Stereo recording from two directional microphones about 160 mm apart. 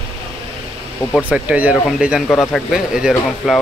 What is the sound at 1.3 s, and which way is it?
Speech, 10° right (ahead or behind).